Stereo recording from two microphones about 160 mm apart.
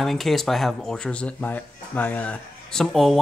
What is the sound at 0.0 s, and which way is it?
Speech, centre (ahead or behind).